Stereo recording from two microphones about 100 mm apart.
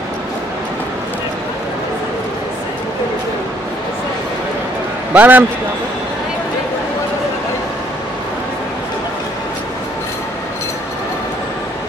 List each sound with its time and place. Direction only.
5.1 s a man's voice: 15° right (ahead or behind)